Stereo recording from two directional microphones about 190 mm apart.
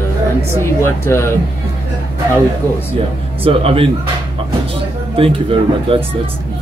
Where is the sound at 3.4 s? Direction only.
30° right (ahead or behind).